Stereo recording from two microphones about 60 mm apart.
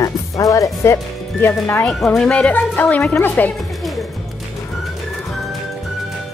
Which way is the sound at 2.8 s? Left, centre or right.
Centre.